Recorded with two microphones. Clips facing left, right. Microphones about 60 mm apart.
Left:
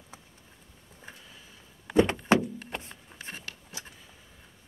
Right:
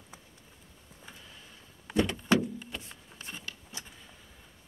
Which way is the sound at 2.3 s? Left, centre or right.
Left.